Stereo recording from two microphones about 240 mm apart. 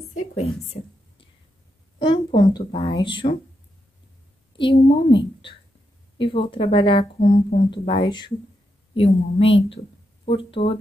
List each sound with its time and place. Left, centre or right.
2.0 s speech: centre
4.6 s speech: left